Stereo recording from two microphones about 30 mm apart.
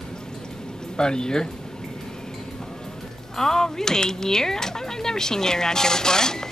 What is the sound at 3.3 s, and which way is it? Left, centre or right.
Speech, centre.